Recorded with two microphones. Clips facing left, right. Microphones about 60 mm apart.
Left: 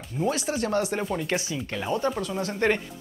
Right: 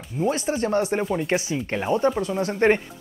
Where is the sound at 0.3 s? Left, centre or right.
Right.